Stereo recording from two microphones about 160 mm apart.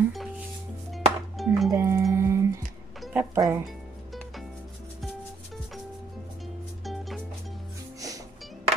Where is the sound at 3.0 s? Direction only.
10° right (ahead or behind).